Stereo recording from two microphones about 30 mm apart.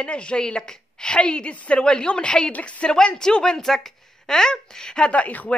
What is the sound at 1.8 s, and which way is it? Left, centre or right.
A woman's voice, left.